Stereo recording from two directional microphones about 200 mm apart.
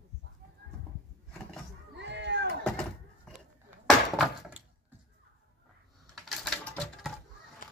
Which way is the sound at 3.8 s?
Centre (ahead or behind).